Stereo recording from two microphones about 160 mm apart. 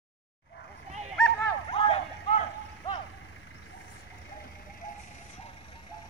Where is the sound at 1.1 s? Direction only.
5° left (ahead or behind).